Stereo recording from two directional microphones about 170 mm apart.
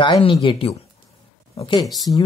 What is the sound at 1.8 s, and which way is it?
Speech, centre (ahead or behind).